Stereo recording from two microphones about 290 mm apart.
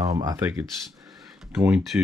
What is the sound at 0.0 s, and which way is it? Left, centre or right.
Speech, centre.